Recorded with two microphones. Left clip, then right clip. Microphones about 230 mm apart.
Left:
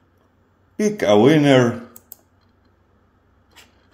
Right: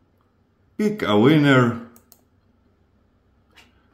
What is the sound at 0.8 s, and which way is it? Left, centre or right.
Speech, centre.